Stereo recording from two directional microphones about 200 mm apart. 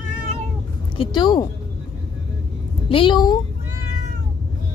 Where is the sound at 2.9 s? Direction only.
25° left (ahead or behind).